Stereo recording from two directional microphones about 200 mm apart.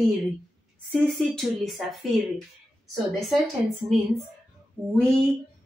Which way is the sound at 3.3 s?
Centre (ahead or behind).